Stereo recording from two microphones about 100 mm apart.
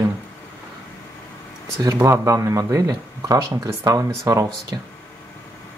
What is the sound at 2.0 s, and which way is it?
Speech, 30° right (ahead or behind).